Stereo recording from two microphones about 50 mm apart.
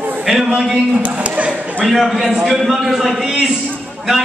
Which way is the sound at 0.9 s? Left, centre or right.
Right.